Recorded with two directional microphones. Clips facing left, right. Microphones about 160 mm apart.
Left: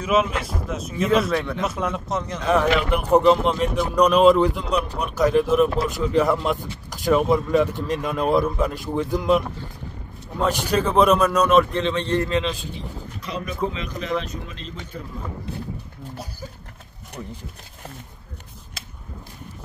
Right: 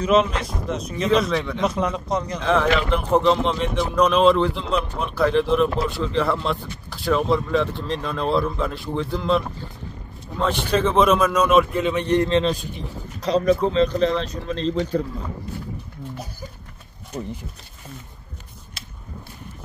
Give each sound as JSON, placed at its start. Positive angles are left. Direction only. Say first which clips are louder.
{"t": 0.0, "sound": "speech", "louder": "right 2 dB", "side_deg": 5}
{"t": 5.9, "sound": "speech", "louder": "left 2 dB", "side_deg": 15}
{"t": 10.4, "sound": "speech", "louder": "right 1 dB", "side_deg": 0}
{"t": 12.3, "sound": "speech", "louder": "right 4 dB", "side_deg": -30}